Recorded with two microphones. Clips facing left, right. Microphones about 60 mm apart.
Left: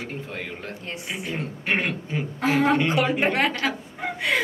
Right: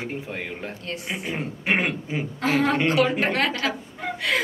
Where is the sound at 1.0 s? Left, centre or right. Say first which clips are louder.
Right 1 dB; right.